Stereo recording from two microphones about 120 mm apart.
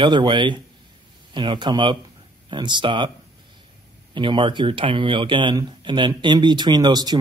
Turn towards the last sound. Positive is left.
turn(degrees=-35)  # may be behind; listen again after turning